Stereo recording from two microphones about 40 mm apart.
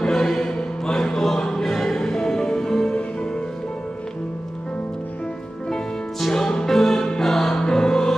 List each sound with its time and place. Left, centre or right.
0.0 s choir: centre
1.4 s music: centre
6.3 s music: centre